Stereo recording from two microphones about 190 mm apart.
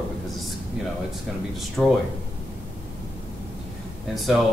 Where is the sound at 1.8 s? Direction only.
Centre (ahead or behind).